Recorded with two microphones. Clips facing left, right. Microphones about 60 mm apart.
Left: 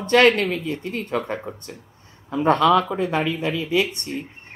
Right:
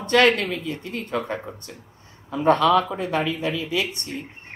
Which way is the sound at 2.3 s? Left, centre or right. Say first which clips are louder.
Left 1 dB; left.